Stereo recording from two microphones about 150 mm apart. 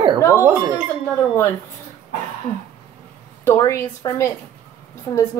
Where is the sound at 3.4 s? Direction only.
20° left (ahead or behind).